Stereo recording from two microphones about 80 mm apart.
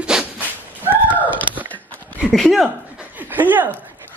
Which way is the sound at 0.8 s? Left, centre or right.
Right.